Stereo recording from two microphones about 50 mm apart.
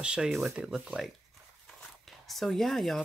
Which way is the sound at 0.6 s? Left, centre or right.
Centre.